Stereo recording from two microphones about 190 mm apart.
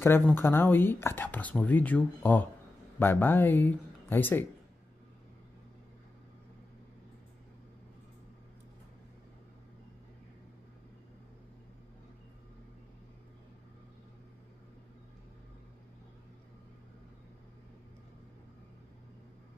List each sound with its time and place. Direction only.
0.0 s speech: 10° left (ahead or behind)